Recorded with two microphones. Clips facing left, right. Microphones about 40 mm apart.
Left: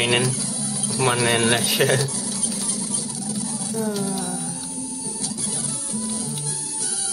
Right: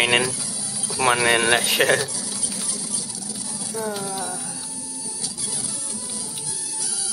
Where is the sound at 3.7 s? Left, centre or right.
Centre.